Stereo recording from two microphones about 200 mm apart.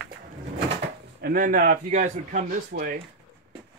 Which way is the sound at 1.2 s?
45° right (ahead or behind).